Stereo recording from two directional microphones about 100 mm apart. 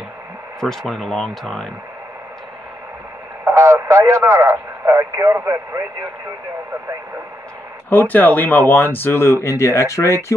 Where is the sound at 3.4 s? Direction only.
30° right (ahead or behind).